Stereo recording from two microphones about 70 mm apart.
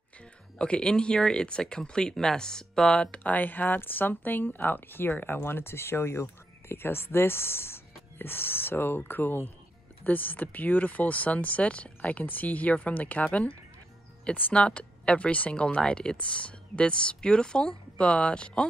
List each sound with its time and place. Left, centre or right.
0.6 s speech: centre